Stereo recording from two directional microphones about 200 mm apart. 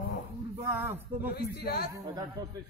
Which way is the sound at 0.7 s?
10° right (ahead or behind).